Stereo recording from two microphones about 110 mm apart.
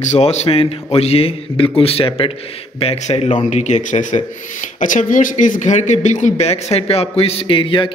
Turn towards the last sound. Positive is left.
turn(degrees=50)  # may be behind; listen again after turning